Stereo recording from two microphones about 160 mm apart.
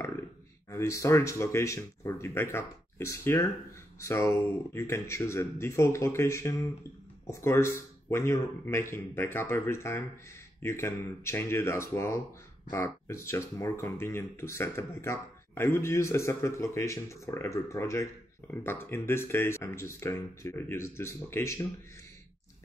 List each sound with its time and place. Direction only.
0.7 s speech: 20° left (ahead or behind)